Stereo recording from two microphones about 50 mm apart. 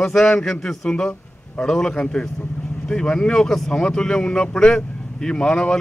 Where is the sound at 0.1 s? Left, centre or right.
Centre.